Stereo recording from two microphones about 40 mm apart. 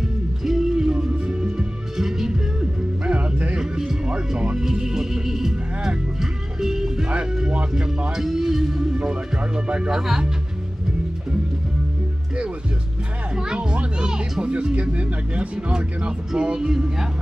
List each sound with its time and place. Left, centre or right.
0.0 s music: centre
2.0 s music: centre; by 3.5 s right
3.5 s music: centre
8.1 s music: centre
8.9 s music: right
9.8 s speech: centre
13.3 s children playing: right
14.4 s speech: right